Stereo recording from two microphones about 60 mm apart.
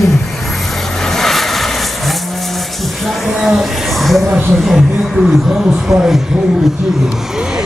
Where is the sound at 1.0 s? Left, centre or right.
Centre.